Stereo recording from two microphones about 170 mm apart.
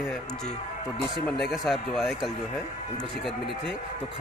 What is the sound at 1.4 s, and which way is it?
Speech, centre (ahead or behind).